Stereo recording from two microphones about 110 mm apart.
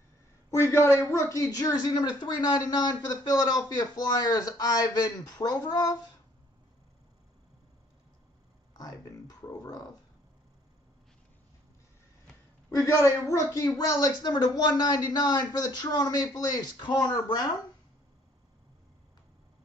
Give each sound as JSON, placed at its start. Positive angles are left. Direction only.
{"t": 0.5, "sound": "speech", "side_deg": 25}
{"t": 8.7, "sound": "a sound", "side_deg": 35}
{"t": 12.7, "sound": "speech", "side_deg": 25}